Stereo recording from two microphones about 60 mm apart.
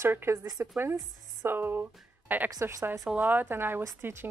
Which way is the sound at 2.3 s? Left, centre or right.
Right.